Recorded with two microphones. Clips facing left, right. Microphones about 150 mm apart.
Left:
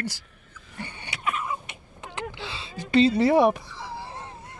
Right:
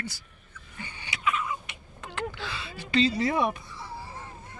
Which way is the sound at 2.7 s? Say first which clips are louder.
Left 6 dB; 45° left (ahead or behind).